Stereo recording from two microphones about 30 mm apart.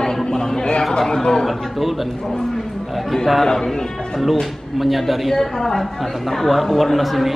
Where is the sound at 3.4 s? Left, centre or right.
Centre.